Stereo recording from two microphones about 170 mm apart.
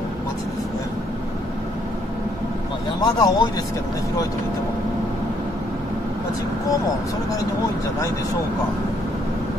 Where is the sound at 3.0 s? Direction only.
25° left (ahead or behind).